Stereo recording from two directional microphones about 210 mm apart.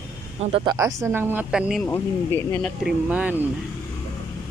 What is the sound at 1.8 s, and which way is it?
Speech, 10° left (ahead or behind).